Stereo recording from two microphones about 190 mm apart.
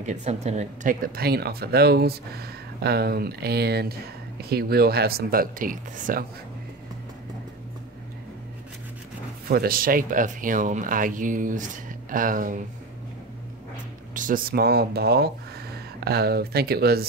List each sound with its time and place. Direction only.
0.0 s speech: 40° right (ahead or behind)
9.5 s speech: 50° right (ahead or behind)
14.1 s speech: 45° right (ahead or behind)